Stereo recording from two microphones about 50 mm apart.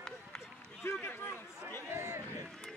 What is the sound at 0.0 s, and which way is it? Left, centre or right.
Run, centre.